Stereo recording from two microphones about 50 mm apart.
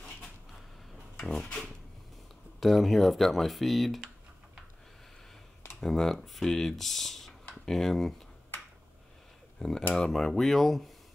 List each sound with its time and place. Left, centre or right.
1.2 s drawer open or close: centre
2.6 s speech: centre
5.8 s speech: centre
9.6 s cutlery: centre
9.9 s speech: centre